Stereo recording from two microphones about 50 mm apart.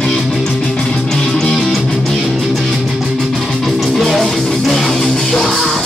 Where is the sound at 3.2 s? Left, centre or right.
Centre.